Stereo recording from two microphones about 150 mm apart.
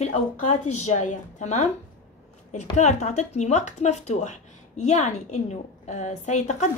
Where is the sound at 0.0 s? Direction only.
45° left (ahead or behind).